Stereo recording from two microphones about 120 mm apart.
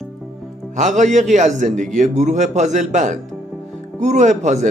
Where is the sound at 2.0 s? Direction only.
80° right.